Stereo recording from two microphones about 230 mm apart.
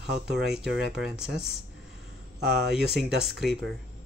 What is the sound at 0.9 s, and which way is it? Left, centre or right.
Speech, centre.